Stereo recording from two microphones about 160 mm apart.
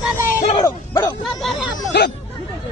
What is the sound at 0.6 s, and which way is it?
Speech, 25° left (ahead or behind).